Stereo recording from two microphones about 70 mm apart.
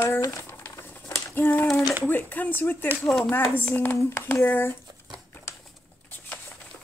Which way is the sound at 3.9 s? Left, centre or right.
Left.